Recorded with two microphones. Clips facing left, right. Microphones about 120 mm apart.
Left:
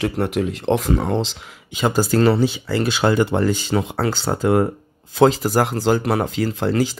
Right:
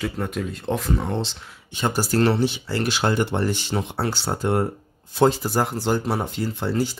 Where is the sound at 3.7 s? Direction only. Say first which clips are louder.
Left 5 dB; 90° left.